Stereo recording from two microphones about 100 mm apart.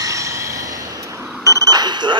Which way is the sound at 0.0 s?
30° right (ahead or behind).